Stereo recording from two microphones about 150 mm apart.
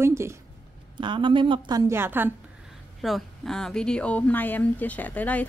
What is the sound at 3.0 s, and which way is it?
A woman's voice, centre (ahead or behind).